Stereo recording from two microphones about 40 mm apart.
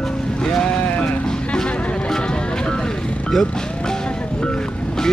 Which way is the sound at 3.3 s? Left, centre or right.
Centre.